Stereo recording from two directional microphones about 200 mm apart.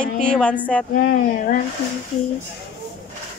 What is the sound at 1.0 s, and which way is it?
Speech, 50° left (ahead or behind).